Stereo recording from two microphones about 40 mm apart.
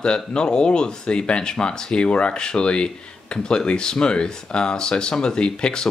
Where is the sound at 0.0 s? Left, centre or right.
Left.